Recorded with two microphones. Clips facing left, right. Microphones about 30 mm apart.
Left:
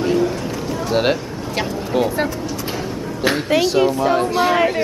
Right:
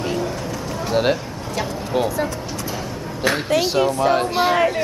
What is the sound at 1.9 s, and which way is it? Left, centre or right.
Speech, centre.